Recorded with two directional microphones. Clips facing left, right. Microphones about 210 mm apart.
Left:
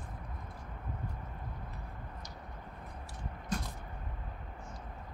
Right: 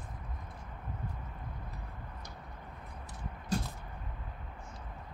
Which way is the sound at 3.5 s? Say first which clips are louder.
Right 3 dB; 30° right (ahead or behind).